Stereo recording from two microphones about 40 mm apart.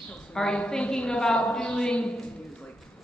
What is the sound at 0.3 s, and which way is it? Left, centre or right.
Speech, centre.